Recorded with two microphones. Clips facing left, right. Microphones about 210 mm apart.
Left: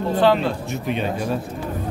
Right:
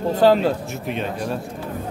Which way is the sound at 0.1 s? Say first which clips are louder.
Right 2 dB; 40° right (ahead or behind).